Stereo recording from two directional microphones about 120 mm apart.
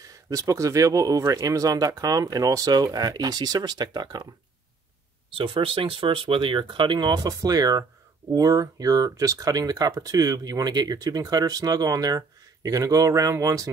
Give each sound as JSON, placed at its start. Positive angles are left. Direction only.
{"t": 0.0, "sound": "speech", "side_deg": -30}
{"t": 5.3, "sound": "speech", "side_deg": -45}